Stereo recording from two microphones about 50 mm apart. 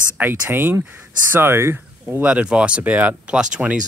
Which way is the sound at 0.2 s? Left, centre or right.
Right.